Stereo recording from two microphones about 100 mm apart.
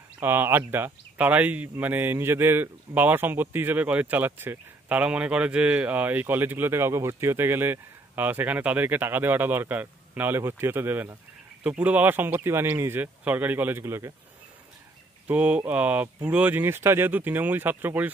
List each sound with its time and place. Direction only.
0.2 s speech: 20° right (ahead or behind)
15.2 s speech: 15° right (ahead or behind)